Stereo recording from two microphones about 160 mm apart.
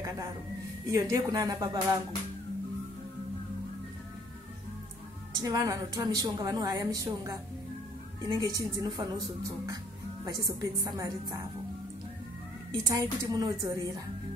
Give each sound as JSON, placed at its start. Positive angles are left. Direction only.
{"t": 0.8, "sound": "a woman's voice", "side_deg": -20}
{"t": 5.4, "sound": "a woman's voice", "side_deg": -20}
{"t": 10.4, "sound": "a woman's voice", "side_deg": -20}
{"t": 12.8, "sound": "a woman's voice", "side_deg": -25}